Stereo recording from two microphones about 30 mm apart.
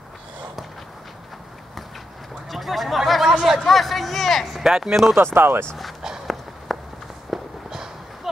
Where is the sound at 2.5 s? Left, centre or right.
Centre.